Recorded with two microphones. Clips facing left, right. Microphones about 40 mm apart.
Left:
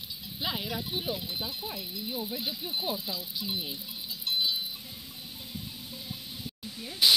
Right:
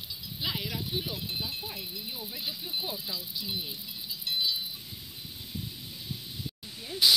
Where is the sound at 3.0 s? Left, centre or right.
Centre.